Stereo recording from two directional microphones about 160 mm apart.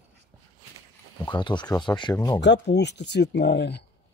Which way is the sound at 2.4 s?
90° left.